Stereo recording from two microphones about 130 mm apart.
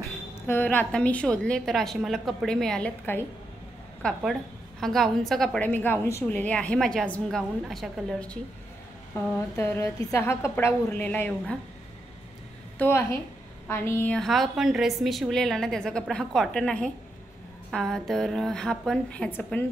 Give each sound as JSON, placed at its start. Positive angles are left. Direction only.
{"t": 0.5, "sound": "a woman's voice", "side_deg": 15}
{"t": 4.2, "sound": "a woman's voice", "side_deg": 0}
{"t": 9.1, "sound": "a sound", "side_deg": 20}
{"t": 10.1, "sound": "a woman's voice", "side_deg": 20}
{"t": 12.7, "sound": "a woman's voice", "side_deg": 15}
{"t": 14.1, "sound": "a woman's voice", "side_deg": 0}